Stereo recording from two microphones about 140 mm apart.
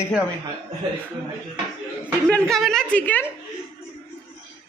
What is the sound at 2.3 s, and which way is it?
A woman's voice, 5° left (ahead or behind).